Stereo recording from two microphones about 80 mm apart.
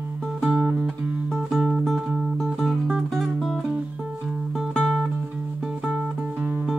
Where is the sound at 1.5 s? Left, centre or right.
Centre.